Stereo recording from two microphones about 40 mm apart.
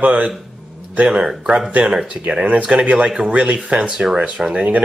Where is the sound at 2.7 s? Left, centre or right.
Right.